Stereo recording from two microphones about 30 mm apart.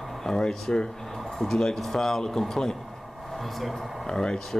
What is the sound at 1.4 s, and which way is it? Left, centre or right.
Speech, centre.